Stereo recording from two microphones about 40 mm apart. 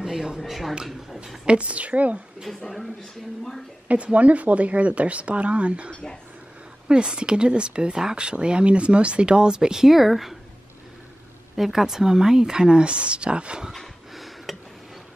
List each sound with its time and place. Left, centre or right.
0.0 s a sound: centre
0.4 s speech: centre
1.4 s a woman's voice: right
2.5 s speech: centre
3.9 s a woman's voice: right; by 10.3 s centre
11.5 s speech: centre; by 13.7 s right
14.1 s a sound: centre